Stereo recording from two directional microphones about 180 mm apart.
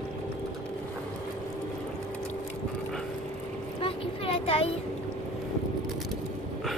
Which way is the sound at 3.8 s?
30° left (ahead or behind).